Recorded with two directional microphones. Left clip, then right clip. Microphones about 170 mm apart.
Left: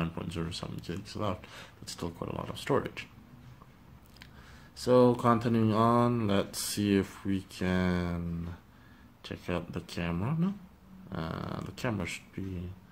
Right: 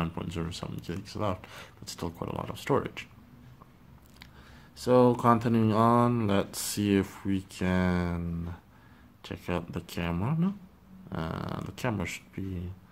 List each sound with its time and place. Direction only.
0.0 s speech: 20° right (ahead or behind)
4.7 s speech: 15° right (ahead or behind)